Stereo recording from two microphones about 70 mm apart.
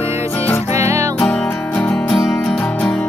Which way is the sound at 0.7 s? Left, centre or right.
Right.